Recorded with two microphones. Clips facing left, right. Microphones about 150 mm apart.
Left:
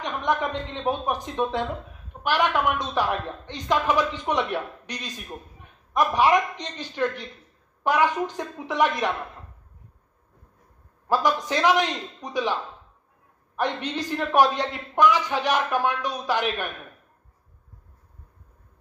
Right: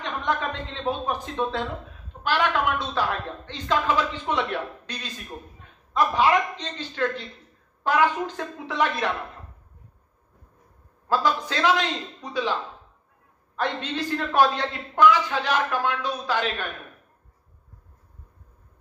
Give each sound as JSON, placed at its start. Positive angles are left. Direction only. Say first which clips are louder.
{"t": 0.0, "sound": "a man's voice", "louder": "left 2 dB", "side_deg": 15}
{"t": 11.1, "sound": "a man's voice", "louder": "left 1 dB", "side_deg": 20}
{"t": 13.6, "sound": "a man's voice", "louder": "left 1 dB", "side_deg": 15}